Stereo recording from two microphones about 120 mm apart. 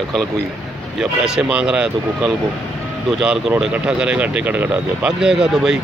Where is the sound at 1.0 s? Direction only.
5° right (ahead or behind).